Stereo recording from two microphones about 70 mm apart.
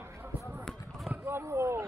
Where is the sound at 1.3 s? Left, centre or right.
Right.